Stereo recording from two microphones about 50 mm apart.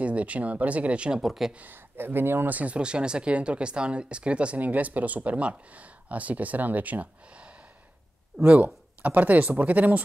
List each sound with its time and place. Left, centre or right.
0.0 s speech: right
1.2 s speech: centre
1.7 s speech: right
2.5 s speech: right